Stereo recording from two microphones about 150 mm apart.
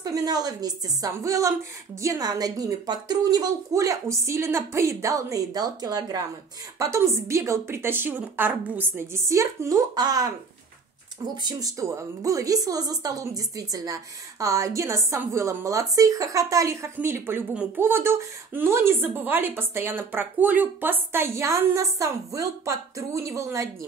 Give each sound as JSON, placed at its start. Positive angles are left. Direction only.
{"t": 0.0, "sound": "speech", "side_deg": -25}
{"t": 11.4, "sound": "speech", "side_deg": -20}